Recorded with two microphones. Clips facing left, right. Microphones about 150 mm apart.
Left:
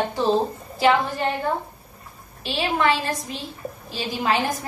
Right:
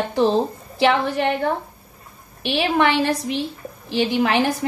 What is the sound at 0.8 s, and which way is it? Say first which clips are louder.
Speech: right 2 dB; 80° right.